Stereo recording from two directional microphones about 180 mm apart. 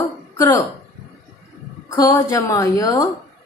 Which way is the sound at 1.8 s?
20° left (ahead or behind).